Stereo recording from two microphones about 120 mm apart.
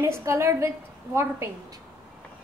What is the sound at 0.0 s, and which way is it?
Speech, 20° right (ahead or behind).